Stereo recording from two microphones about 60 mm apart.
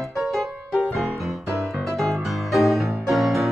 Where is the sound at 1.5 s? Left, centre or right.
Right.